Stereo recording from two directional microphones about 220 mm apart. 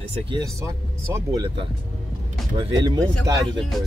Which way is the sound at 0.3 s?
15° right (ahead or behind).